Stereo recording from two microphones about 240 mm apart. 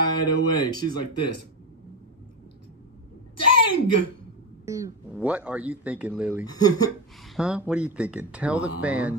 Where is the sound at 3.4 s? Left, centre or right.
Left.